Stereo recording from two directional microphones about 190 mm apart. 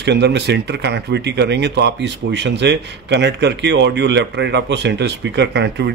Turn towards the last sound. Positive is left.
turn(degrees=-60)  # may be behind; listen again after turning